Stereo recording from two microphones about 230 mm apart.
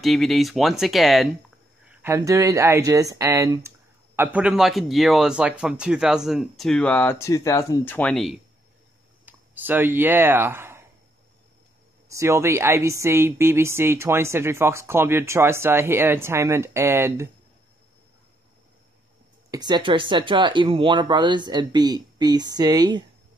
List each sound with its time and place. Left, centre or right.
0.0 s speech: centre
9.2 s speech: centre
12.1 s speech: centre
19.5 s speech: centre